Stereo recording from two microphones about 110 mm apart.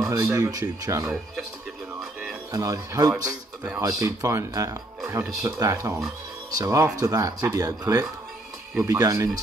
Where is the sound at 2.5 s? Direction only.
30° right (ahead or behind).